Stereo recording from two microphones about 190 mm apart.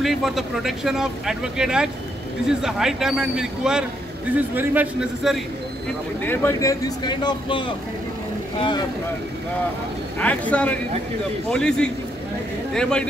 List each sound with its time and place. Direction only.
0.0 s a man's voice: centre (ahead or behind)
6.2 s speech: 10° left (ahead or behind)
10.1 s a man's voice: 5° left (ahead or behind)